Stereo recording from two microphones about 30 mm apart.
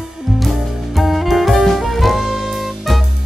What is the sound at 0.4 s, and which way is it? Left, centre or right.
Music, centre.